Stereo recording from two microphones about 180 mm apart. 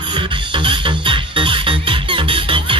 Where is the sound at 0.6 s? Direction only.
25° right (ahead or behind).